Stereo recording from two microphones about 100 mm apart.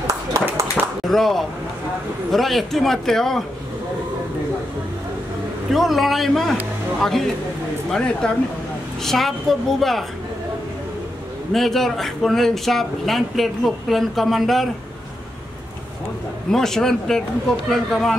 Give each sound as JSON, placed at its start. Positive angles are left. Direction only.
{"t": 0.0, "sound": "a sound", "side_deg": -30}
{"t": 1.0, "sound": "speech", "side_deg": 0}
{"t": 5.7, "sound": "speech", "side_deg": 0}
{"t": 11.5, "sound": "speech", "side_deg": 5}
{"t": 16.4, "sound": "speech", "side_deg": 5}